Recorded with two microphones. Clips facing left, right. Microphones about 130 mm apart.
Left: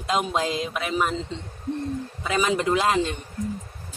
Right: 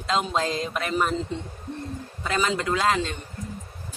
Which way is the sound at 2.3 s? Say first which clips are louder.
Left 2 dB; 15° left (ahead or behind).